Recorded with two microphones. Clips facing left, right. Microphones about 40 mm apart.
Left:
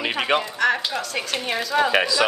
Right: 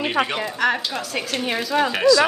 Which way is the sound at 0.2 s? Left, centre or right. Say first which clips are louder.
Left 2 dB; centre.